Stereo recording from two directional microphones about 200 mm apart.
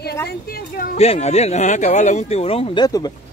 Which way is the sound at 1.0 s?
35° left (ahead or behind).